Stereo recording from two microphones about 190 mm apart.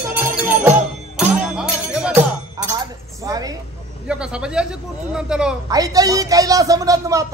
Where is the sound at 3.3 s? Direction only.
20° right (ahead or behind).